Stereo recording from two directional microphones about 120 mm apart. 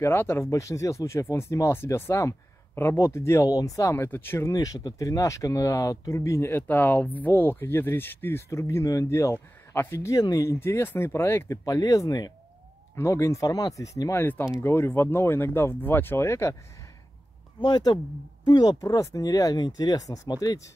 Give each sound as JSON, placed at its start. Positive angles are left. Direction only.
{"t": 0.0, "sound": "speech", "side_deg": 20}
{"t": 14.2, "sound": "speech", "side_deg": 15}
{"t": 17.6, "sound": "speech", "side_deg": 35}